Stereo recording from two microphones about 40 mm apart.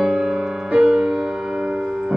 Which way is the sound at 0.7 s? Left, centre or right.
Right.